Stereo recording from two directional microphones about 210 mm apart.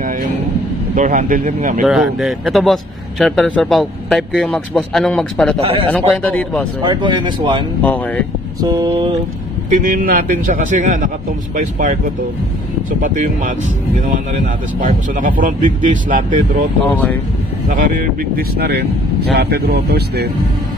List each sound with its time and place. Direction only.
0.9 s speech: 35° right (ahead or behind)
1.9 s a man's voice: centre (ahead or behind)
6.8 s speech: 20° right (ahead or behind)
9.7 s speech: 40° right (ahead or behind)
13.0 s speech: 40° right (ahead or behind)
17.6 s speech: 40° right (ahead or behind)